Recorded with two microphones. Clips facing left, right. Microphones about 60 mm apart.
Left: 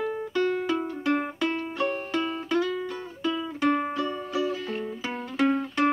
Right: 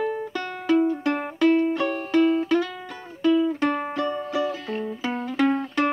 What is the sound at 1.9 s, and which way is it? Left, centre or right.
Music, centre.